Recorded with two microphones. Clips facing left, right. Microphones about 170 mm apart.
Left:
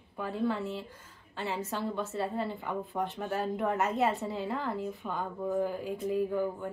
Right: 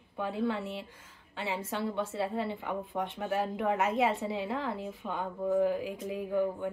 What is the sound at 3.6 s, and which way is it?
Speech, 80° right.